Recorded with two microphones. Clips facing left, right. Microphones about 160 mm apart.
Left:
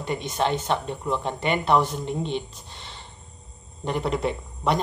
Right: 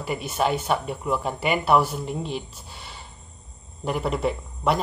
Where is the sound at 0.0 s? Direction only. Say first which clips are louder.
Right 1 dB; 5° right (ahead or behind).